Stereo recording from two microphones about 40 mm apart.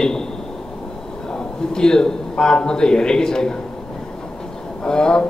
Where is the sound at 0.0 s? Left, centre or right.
Centre.